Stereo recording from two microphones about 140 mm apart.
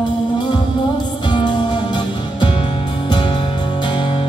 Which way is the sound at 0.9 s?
30° left (ahead or behind).